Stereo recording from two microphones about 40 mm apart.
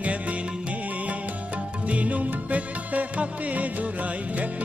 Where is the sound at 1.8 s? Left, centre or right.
Right.